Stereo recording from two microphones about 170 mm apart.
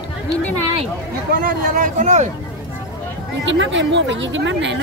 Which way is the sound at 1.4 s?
50° right (ahead or behind).